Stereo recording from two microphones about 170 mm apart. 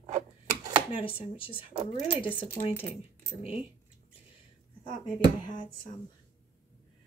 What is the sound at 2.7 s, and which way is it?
Speech, 15° left (ahead or behind).